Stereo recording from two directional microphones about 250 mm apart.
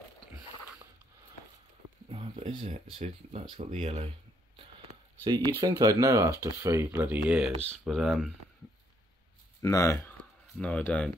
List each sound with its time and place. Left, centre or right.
2.0 s a sound: right
2.6 s speech: right
5.2 s speech: centre
9.6 s speech: centre